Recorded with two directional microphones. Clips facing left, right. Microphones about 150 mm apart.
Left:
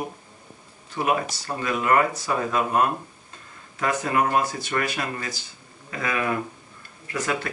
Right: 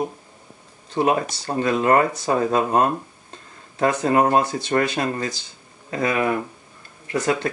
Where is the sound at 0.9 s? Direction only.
30° right (ahead or behind).